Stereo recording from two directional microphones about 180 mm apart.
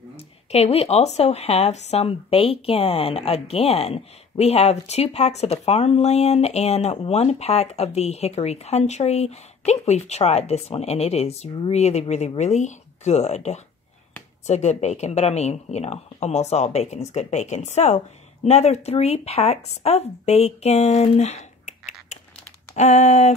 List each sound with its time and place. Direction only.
0.1 s speech: 35° left (ahead or behind)